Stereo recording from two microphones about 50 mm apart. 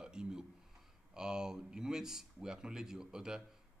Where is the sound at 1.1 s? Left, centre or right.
Centre.